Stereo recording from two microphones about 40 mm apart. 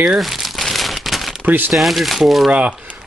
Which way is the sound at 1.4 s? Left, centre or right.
Right.